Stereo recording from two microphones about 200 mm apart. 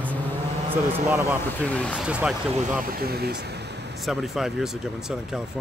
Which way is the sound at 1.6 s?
5° left (ahead or behind).